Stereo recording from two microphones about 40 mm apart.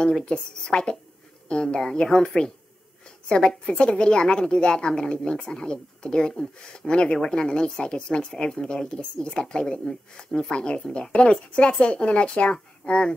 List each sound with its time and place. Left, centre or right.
0.0 s a woman's voice: left